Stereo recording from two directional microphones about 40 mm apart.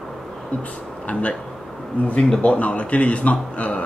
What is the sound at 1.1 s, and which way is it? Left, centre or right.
Speech, left.